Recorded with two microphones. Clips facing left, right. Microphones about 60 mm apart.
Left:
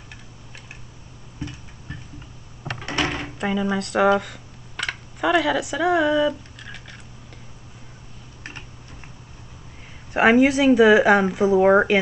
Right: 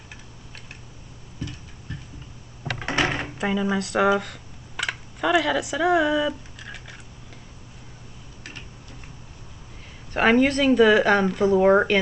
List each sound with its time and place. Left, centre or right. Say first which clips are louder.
2.8 s door: right 1 dB; right
3.3 s speech: left 2 dB; centre
10.1 s speech: left 3 dB; centre